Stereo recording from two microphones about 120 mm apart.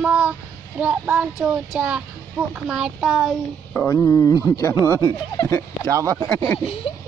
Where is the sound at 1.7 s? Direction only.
5° right (ahead or behind).